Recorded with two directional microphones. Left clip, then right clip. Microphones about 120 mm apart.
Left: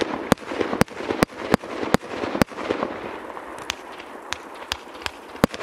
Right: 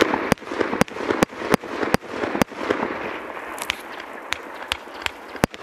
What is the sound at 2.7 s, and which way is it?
Fireworks, 45° right (ahead or behind).